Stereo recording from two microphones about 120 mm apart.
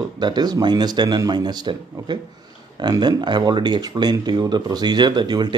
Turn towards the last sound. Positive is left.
turn(degrees=-35)  # may be behind; listen again after turning